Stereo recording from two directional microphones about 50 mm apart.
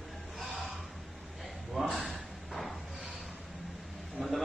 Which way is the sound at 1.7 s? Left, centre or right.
Centre.